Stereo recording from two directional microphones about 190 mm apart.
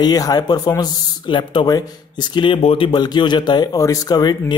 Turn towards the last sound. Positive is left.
turn(degrees=20)  # may be behind; listen again after turning